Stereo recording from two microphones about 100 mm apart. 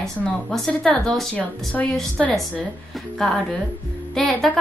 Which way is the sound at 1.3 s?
15° left (ahead or behind).